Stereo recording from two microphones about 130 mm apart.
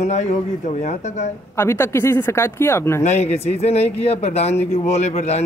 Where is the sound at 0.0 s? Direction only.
65° left (ahead or behind).